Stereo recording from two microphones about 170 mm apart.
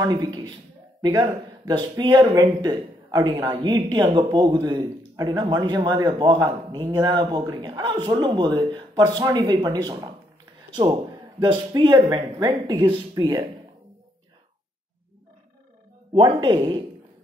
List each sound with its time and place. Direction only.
0.0 s speech: 25° right (ahead or behind)
16.1 s speech: 30° right (ahead or behind)